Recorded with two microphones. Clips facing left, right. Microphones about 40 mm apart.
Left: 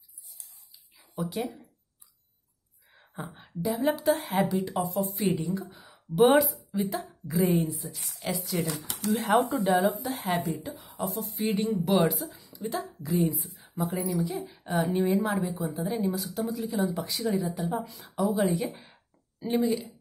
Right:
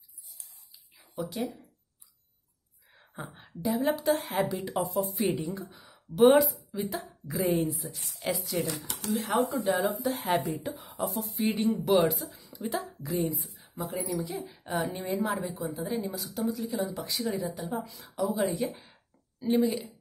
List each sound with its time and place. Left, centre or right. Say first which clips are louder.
0.9 s a sound: left 2 dB; centre
2.9 s a woman's voice: left 2 dB; centre
9.1 s speech: left 3 dB; left
9.7 s speech: left 2 dB; centre